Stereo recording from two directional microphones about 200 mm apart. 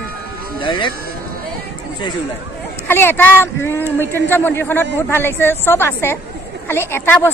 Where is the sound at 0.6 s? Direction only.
25° left (ahead or behind).